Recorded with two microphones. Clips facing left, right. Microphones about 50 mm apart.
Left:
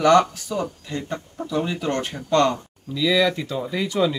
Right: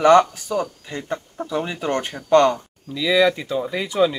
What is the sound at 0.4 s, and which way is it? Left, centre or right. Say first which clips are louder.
Speech: right 3 dB; centre.